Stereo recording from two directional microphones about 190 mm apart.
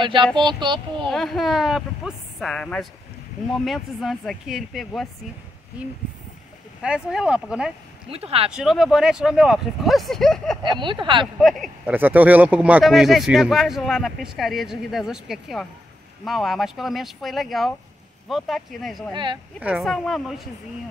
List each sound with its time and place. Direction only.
0.0 s speech: 25° right (ahead or behind)
1.0 s speech: centre (ahead or behind)
6.8 s speech: 5° right (ahead or behind)
8.1 s speech: 30° right (ahead or behind)
8.5 s speech: centre (ahead or behind)
10.6 s speech: 25° right (ahead or behind)
11.3 s speech: centre (ahead or behind)
11.8 s speech: 10° right (ahead or behind)